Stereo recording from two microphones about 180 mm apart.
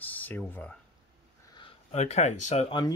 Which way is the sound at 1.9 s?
40° left (ahead or behind).